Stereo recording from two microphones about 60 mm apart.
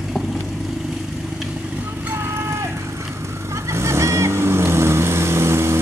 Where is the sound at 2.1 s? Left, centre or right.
Right.